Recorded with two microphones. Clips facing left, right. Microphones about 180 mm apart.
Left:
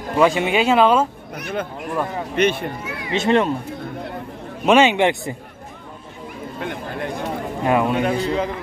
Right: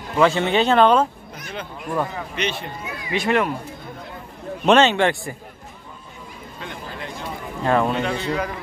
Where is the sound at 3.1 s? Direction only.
25° left (ahead or behind).